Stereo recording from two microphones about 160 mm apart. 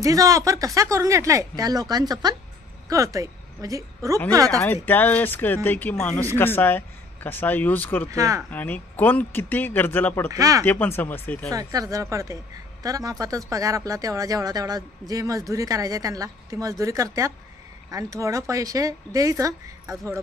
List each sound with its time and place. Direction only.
0.0 s a woman's voice: 20° right (ahead or behind)
4.5 s speech: 5° left (ahead or behind)
8.1 s speech: 20° right (ahead or behind)
8.5 s speech: 10° left (ahead or behind)
10.3 s speech: 20° right (ahead or behind)
10.6 s speech: 10° left (ahead or behind)
11.5 s speech: 20° right (ahead or behind)